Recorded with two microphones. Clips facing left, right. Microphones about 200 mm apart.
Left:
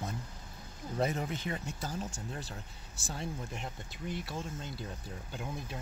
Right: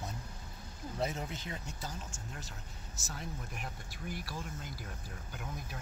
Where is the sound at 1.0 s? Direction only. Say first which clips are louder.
Left 4 dB; 60° left (ahead or behind).